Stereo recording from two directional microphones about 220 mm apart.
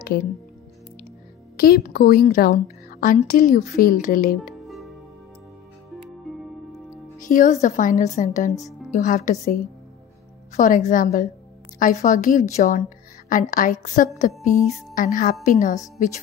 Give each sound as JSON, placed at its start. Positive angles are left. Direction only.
{"t": 1.6, "sound": "a woman's voice", "side_deg": 40}
{"t": 6.3, "sound": "music", "side_deg": 0}
{"t": 7.2, "sound": "a woman's voice", "side_deg": 35}